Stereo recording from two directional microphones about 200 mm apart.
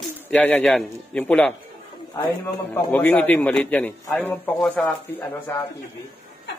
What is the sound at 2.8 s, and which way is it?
A man's voice, 10° left (ahead or behind).